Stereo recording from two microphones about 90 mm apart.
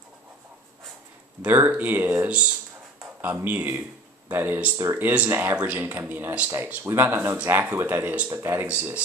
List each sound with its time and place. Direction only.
1.4 s speech: 20° right (ahead or behind)
8.6 s speech: 15° right (ahead or behind)